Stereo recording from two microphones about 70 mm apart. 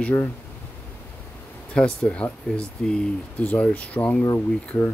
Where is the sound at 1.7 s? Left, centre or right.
Centre.